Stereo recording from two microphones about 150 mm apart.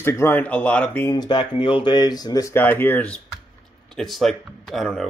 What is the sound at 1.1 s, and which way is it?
Speech, 30° left (ahead or behind).